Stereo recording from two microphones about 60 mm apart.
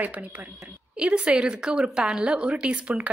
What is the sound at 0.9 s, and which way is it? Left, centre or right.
A woman's voice, centre.